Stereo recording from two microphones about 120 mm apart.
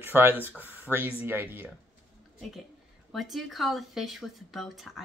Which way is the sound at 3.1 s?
Centre (ahead or behind).